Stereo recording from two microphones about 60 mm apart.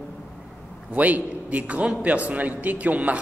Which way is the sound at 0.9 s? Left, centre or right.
Right.